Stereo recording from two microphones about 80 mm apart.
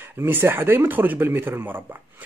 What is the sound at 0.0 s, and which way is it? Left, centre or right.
Speech, right.